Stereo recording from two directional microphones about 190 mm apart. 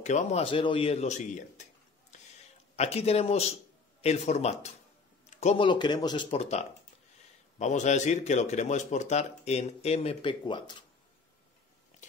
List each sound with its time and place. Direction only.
0.0 s a man's voice: 35° left (ahead or behind)
6.3 s a man's voice: 35° left (ahead or behind)